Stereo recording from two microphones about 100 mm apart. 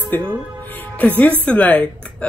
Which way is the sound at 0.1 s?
20° left (ahead or behind).